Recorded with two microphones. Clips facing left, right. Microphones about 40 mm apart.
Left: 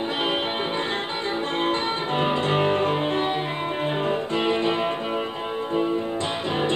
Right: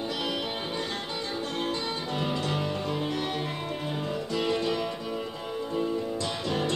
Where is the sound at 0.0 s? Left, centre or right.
Left.